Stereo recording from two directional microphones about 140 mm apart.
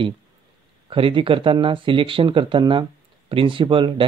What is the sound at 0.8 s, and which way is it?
Speech, 40° right (ahead or behind).